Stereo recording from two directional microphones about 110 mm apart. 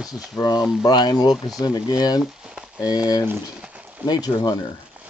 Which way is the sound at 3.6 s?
10° right (ahead or behind).